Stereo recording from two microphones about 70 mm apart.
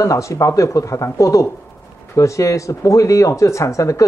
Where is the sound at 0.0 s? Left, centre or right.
Left.